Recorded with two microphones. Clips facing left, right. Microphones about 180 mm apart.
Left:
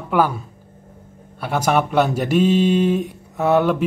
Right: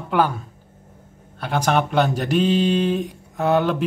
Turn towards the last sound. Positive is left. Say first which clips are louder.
# left 2 dB
turn(degrees=5)  # may be behind; listen again after turning